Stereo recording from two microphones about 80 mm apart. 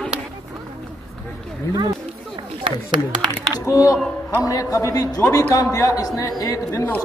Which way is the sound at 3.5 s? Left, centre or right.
Left.